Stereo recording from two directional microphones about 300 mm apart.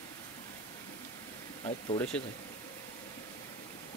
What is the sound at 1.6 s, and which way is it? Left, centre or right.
Speech, centre.